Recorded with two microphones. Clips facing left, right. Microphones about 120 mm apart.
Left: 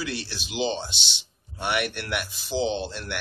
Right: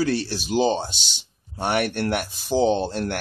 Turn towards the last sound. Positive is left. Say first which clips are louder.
# right 7 dB
turn(degrees=-45)  # may be behind; listen again after turning